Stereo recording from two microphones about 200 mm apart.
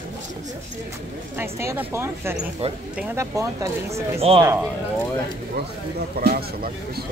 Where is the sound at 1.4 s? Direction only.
10° right (ahead or behind).